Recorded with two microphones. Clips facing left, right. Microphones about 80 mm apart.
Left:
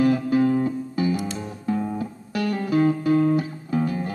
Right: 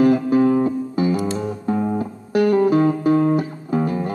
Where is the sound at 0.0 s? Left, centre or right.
Right.